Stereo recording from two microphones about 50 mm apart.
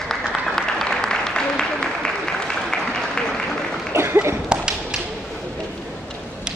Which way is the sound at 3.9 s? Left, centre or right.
Right.